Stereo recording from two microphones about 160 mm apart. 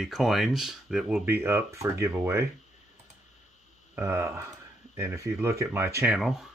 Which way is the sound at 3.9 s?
15° right (ahead or behind).